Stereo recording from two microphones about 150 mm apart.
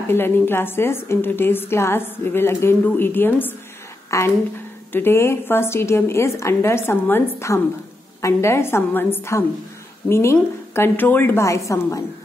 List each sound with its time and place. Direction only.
0.1 s a woman's voice: 15° left (ahead or behind)